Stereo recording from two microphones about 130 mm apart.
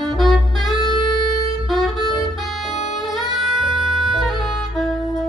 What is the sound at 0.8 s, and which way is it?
Music, 35° left (ahead or behind).